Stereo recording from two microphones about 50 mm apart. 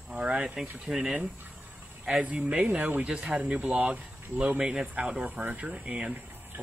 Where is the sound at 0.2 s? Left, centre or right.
Centre.